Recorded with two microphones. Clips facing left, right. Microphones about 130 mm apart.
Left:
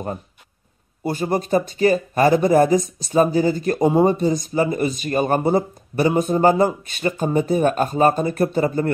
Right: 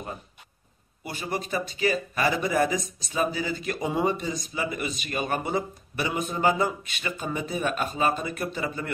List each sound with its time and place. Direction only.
1.0 s speech: 40° left (ahead or behind)